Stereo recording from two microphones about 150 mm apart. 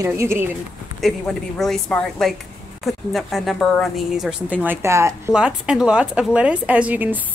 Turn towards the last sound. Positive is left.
turn(degrees=-10)  # may be behind; listen again after turning